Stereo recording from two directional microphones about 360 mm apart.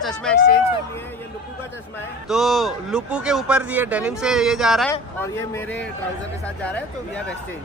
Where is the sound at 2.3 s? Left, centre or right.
Centre.